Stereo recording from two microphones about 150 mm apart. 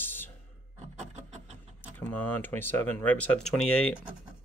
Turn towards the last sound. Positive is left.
turn(degrees=5)  # may be behind; listen again after turning